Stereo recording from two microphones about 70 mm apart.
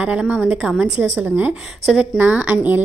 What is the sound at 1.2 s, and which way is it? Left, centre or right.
Speech, right.